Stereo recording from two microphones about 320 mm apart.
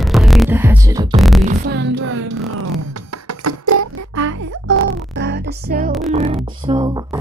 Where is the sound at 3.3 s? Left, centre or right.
Right.